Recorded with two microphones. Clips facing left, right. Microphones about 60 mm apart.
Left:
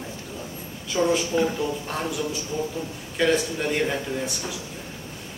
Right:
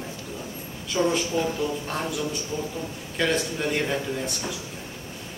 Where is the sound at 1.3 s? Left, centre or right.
Left.